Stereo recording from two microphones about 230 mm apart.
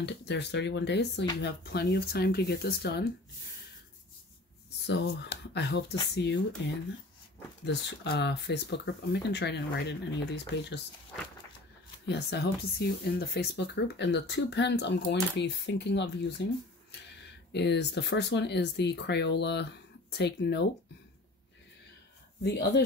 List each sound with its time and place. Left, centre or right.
0.0 s speech: left
4.8 s speech: left
7.6 s speech: left
12.1 s speech: left
17.5 s speech: left
22.4 s speech: left